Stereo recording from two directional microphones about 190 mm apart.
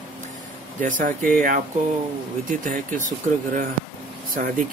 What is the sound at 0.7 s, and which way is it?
Speech, 45° right (ahead or behind).